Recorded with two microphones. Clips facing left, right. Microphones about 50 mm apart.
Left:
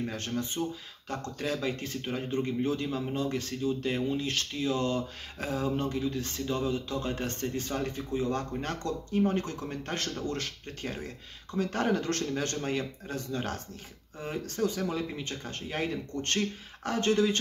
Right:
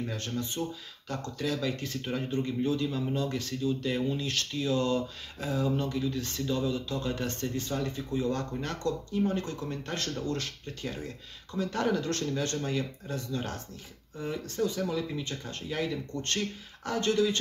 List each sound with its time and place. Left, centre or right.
0.1 s speech: left
2.4 s speech: left
3.1 s speech: left
5.4 s speech: left
5.9 s speech: left